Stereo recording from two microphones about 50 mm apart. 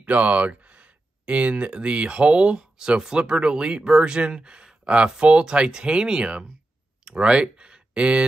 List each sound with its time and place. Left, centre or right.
0.0 s speech: right